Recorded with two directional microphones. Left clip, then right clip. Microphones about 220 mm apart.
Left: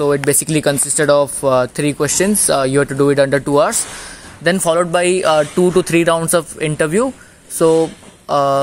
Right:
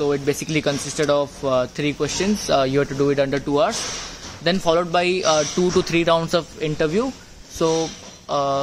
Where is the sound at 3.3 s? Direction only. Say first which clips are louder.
Left 6 dB; 50° left (ahead or behind).